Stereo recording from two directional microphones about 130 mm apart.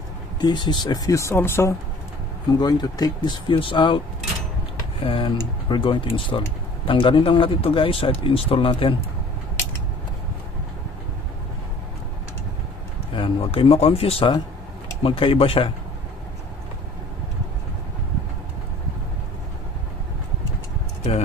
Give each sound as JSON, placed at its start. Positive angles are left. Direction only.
{"t": 0.4, "sound": "speech", "side_deg": 35}
{"t": 2.5, "sound": "speech", "side_deg": 30}
{"t": 5.0, "sound": "speech", "side_deg": 45}
{"t": 13.1, "sound": "speech", "side_deg": 45}